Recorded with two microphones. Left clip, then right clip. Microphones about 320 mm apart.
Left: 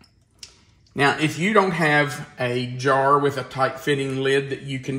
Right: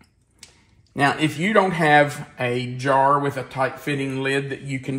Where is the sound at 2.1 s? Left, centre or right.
Centre.